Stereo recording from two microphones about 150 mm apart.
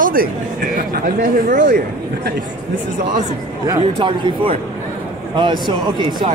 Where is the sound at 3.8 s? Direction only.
30° right (ahead or behind).